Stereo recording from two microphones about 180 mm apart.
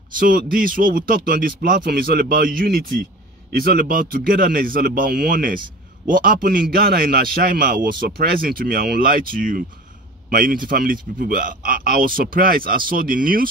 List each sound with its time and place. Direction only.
0.2 s speech: 50° right (ahead or behind)